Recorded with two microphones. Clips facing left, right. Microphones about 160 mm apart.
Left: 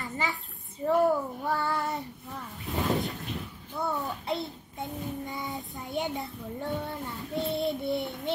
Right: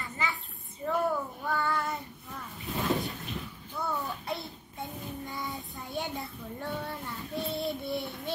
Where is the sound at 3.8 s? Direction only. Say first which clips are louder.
Left 2 dB; 20° left (ahead or behind).